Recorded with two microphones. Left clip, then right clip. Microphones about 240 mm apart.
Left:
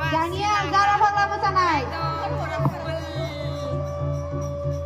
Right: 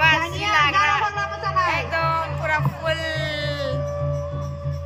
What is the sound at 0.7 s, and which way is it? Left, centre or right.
Music, left.